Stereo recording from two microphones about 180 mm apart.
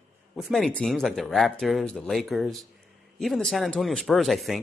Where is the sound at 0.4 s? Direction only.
Centre (ahead or behind).